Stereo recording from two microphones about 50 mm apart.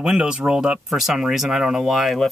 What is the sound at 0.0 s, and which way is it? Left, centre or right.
Speech, centre.